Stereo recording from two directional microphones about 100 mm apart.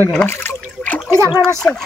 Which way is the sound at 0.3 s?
20° left (ahead or behind).